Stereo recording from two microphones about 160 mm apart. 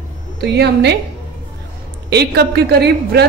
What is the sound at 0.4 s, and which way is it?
Speech, 90° right.